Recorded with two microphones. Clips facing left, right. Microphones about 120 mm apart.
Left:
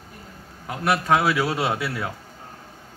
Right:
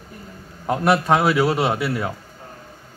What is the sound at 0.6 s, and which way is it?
A man's voice, 30° right (ahead or behind).